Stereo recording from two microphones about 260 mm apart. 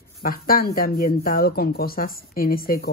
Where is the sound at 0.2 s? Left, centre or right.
Left.